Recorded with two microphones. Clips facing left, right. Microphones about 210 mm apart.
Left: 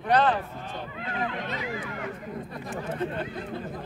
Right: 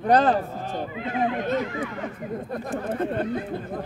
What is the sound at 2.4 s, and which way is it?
Speech, 50° right (ahead or behind).